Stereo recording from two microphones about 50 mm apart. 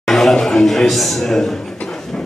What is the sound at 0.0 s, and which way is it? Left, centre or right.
A man's voice, centre.